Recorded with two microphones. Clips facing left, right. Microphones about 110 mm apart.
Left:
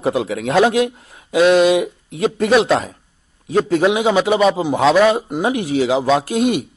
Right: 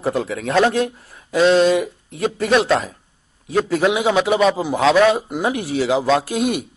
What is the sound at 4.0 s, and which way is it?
A man's voice, centre (ahead or behind).